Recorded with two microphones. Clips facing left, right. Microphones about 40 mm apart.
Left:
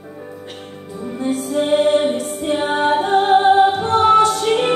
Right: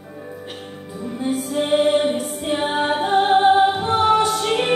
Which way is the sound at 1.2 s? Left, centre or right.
Centre.